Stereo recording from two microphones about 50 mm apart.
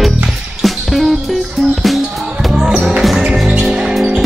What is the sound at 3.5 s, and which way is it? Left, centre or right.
Music, centre.